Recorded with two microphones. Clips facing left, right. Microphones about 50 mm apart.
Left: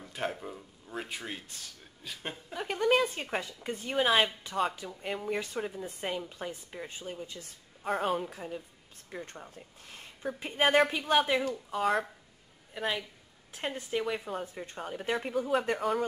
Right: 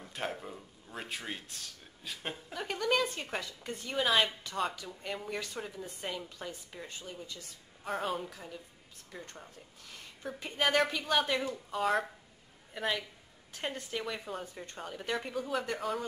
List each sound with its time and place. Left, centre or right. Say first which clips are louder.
0.0 s speech: left 3 dB; centre
3.0 s a woman's voice: left 3 dB; left
4.0 s a woman's voice: left 2 dB; centre
7.8 s speech: left 4 dB; centre
8.3 s a woman's voice: left 6 dB; left
9.8 s a sound: even; left
10.4 s a woman's voice: left 4 dB; centre
11.1 s speech: left 4 dB; centre